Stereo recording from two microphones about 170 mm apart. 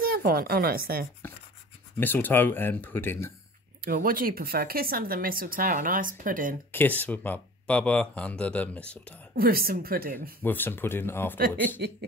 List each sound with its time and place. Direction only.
0.0 s speech: 60° right (ahead or behind)
2.0 s speech: 10° left (ahead or behind)
3.8 s speech: 60° right (ahead or behind)
6.7 s speech: 10° left (ahead or behind)
9.3 s speech: 60° right (ahead or behind)
10.4 s speech: 10° left (ahead or behind)